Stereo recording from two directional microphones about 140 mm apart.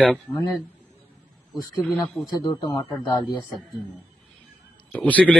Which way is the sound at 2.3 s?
30° left (ahead or behind).